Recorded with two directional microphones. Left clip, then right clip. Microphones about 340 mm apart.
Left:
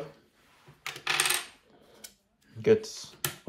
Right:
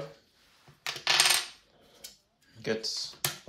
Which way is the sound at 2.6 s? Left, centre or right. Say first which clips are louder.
Left 8 dB; centre.